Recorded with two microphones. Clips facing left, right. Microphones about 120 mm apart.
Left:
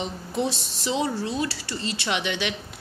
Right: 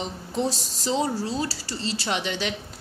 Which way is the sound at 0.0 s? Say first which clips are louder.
Even; 5° left (ahead or behind).